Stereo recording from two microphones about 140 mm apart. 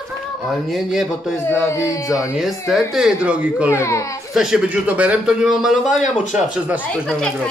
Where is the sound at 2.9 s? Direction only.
5° right (ahead or behind).